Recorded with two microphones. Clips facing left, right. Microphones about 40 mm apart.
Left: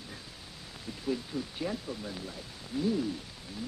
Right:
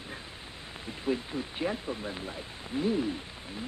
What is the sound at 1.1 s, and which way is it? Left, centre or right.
Speech, right.